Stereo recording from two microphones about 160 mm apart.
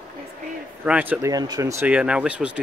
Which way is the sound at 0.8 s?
10° right (ahead or behind).